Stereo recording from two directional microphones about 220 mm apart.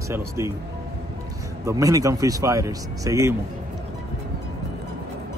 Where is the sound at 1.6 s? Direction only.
15° right (ahead or behind).